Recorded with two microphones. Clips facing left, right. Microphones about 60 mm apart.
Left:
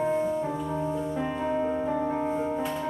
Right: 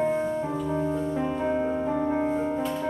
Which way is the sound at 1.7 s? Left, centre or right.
Centre.